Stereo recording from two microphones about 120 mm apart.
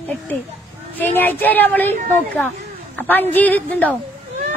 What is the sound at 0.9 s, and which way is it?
A woman's voice, 15° left (ahead or behind).